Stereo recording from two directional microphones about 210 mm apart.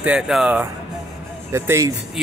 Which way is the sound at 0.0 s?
5° right (ahead or behind).